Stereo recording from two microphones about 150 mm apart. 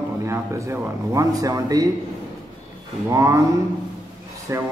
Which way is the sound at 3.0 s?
20° right (ahead or behind).